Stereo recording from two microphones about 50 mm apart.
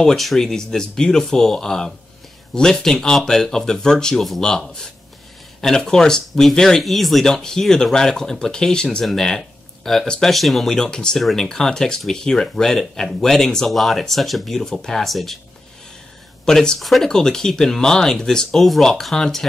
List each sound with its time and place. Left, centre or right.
0.0 s speech: centre
6.8 s speech: centre
10.3 s speech: centre
16.4 s speech: centre